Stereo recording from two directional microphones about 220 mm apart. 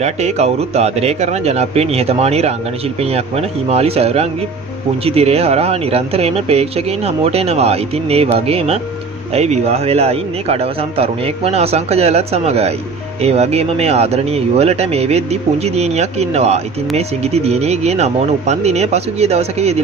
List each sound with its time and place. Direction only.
0.0 s speech: 30° right (ahead or behind)